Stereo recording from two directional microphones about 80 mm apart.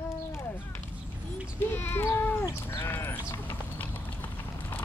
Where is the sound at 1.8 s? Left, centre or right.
Left.